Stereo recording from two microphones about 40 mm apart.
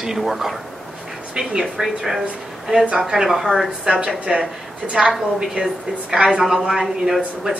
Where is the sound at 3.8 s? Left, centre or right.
Centre.